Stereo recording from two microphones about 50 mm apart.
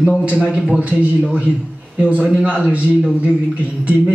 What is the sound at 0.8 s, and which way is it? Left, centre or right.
A man's voice, right.